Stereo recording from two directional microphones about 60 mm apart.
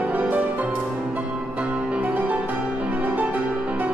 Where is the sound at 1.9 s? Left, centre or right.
Right.